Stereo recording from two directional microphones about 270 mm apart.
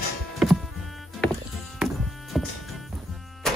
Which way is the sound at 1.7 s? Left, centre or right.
Centre.